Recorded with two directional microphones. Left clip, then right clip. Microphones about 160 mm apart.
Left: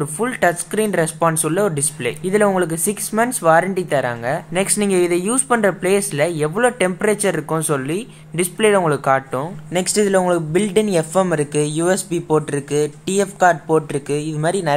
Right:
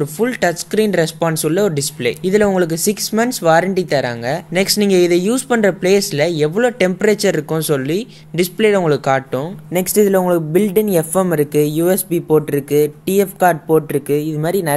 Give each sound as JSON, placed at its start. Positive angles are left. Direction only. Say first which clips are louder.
{"t": 0.0, "sound": "speech", "louder": "right 1 dB", "side_deg": -30}